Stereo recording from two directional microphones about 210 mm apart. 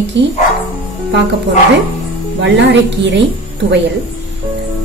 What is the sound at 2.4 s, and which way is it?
Speech, 55° right (ahead or behind).